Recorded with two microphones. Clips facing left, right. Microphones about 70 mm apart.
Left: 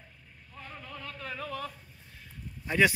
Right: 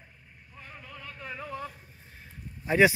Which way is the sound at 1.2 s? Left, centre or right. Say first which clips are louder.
Even; centre.